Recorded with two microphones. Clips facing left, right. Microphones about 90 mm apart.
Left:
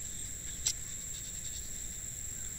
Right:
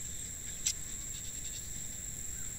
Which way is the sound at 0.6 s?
10° left (ahead or behind).